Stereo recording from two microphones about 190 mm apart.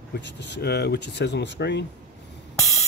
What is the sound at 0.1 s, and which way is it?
Speech, 65° left (ahead or behind).